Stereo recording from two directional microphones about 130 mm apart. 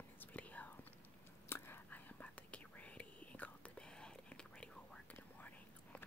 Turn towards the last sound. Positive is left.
turn(degrees=10)  # may be behind; listen again after turning